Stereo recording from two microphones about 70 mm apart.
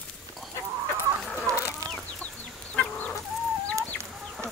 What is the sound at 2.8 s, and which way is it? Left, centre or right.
Chicken, centre.